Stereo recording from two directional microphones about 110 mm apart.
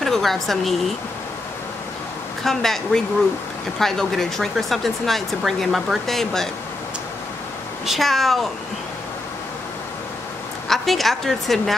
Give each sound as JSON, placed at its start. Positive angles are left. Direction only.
{"t": 0.0, "sound": "speech", "side_deg": 0}
{"t": 2.4, "sound": "speech", "side_deg": 5}
{"t": 7.8, "sound": "speech", "side_deg": 0}
{"t": 10.7, "sound": "speech", "side_deg": 0}